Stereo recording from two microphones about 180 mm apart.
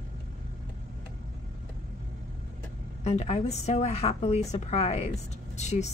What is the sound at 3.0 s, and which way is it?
A woman's voice, 35° left (ahead or behind).